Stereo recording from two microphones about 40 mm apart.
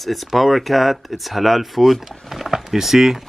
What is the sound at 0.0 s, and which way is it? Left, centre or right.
Speech, centre.